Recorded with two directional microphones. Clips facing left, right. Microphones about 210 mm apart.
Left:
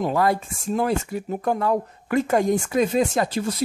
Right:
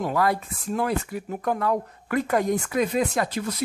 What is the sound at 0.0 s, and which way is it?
Speech, 25° left (ahead or behind).